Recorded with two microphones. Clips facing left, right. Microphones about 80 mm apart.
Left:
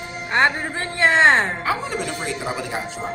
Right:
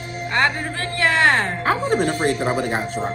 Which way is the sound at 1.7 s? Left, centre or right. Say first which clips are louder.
Right 5 dB; right.